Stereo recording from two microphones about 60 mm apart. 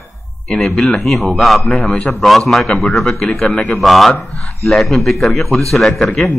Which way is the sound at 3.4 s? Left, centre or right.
Centre.